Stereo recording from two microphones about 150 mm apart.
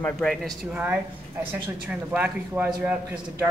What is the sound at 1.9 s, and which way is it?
A man's voice, 5° right (ahead or behind).